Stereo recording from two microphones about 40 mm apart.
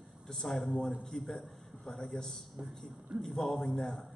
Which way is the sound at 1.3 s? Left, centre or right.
Centre.